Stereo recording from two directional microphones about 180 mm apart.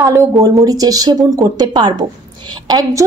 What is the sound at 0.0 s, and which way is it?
A woman's voice, 20° right (ahead or behind).